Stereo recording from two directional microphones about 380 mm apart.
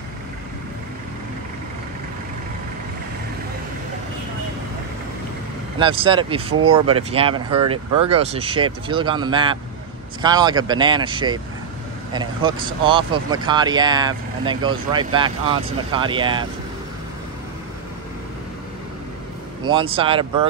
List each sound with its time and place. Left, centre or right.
5.8 s speech: centre
19.6 s speech: centre